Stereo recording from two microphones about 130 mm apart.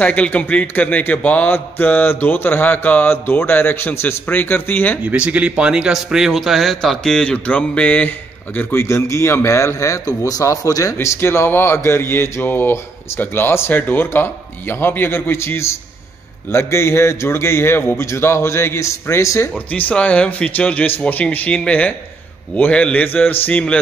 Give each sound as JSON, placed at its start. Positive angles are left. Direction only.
{"t": 0.0, "sound": "a man's voice", "side_deg": 10}
{"t": 5.0, "sound": "a man's voice", "side_deg": -10}
{"t": 19.9, "sound": "a man's voice", "side_deg": 10}